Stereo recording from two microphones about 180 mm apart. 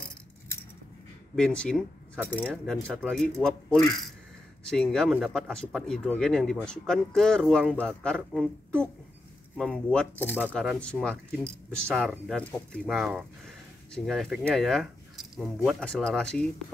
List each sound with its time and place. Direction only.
1.3 s speech: 5° left (ahead or behind)